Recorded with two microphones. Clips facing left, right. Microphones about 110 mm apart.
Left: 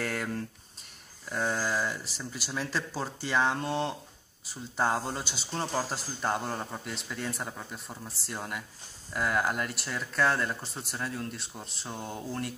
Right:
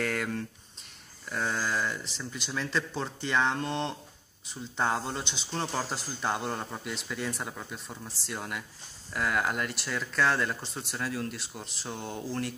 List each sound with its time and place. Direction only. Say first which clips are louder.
0.0 s speech: right 2 dB; 5° left (ahead or behind)